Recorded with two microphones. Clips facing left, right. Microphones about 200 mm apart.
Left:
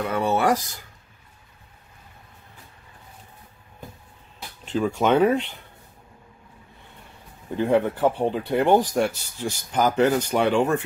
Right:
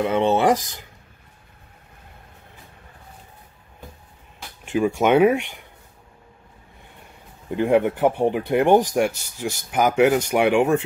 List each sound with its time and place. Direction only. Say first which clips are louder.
0.0 s speech: right 4 dB; 20° right (ahead or behind)
4.6 s speech: right 2 dB; 10° right (ahead or behind)
7.5 s speech: right 2 dB; 15° right (ahead or behind)